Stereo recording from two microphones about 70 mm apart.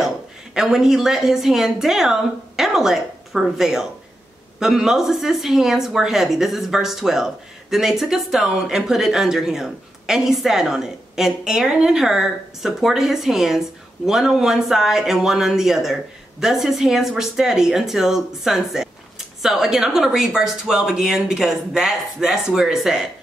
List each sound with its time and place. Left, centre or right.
0.6 s speech: centre